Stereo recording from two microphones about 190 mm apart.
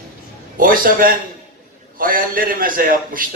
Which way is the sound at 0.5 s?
50° right (ahead or behind).